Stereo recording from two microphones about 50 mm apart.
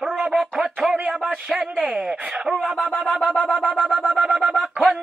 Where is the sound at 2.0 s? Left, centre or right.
Centre.